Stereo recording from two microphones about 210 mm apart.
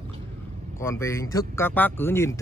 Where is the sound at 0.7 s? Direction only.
15° left (ahead or behind).